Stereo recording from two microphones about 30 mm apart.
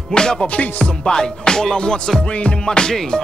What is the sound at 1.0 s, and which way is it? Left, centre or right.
Music, left.